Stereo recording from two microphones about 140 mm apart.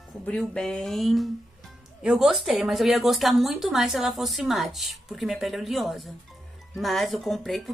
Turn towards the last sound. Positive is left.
turn(degrees=0)  # may be behind; listen again after turning